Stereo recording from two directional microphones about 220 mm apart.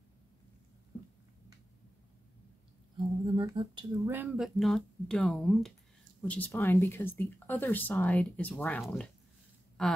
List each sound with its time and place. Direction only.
3.3 s speech: 20° right (ahead or behind)
4.1 s speech: 5° right (ahead or behind)